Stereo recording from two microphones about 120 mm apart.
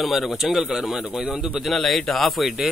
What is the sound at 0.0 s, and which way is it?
A man's voice, centre (ahead or behind).